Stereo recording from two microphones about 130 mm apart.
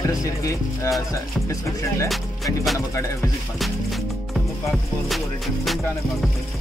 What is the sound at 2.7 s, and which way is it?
Speech, 25° left (ahead or behind).